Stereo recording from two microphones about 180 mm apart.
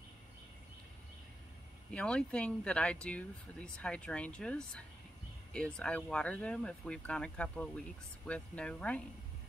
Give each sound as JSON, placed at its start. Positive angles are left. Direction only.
{"t": 1.9, "sound": "speech", "side_deg": 5}